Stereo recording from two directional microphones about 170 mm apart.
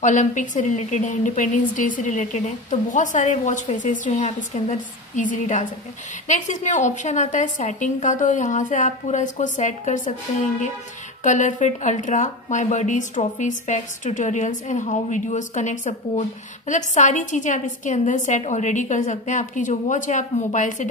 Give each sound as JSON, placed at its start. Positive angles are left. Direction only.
{"t": 0.0, "sound": "a woman's voice", "side_deg": 45}
{"t": 11.2, "sound": "a woman's voice", "side_deg": 45}